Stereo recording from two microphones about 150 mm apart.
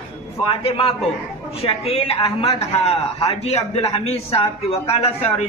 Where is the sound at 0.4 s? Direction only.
40° left (ahead or behind).